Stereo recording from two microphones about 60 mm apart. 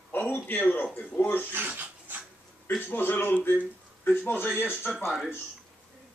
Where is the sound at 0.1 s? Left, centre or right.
Left.